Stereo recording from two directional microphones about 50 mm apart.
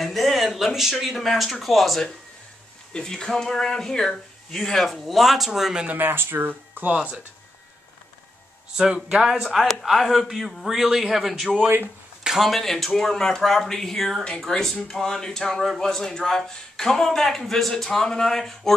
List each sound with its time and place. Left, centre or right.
0.0 s speech: centre
5.9 s speech: right
6.9 s speech: right
8.7 s speech: centre
12.2 s a sound: centre
12.4 s speech: centre